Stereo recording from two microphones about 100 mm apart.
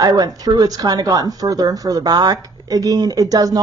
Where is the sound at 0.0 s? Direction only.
40° right (ahead or behind).